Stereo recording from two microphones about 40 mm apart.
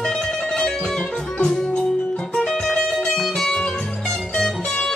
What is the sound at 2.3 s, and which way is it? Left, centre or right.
Music, centre.